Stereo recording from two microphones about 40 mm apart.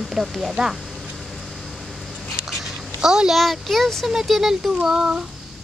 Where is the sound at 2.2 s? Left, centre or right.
Centre.